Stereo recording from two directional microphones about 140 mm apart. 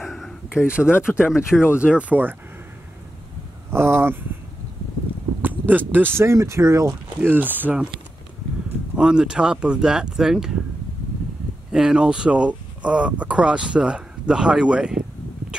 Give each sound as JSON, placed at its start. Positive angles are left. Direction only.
{"t": 0.0, "sound": "a sound", "side_deg": 0}
{"t": 0.7, "sound": "speech", "side_deg": -5}
{"t": 3.7, "sound": "speech", "side_deg": -15}
{"t": 5.4, "sound": "speech", "side_deg": -15}
{"t": 8.9, "sound": "speech", "side_deg": -5}
{"t": 11.7, "sound": "speech", "side_deg": -5}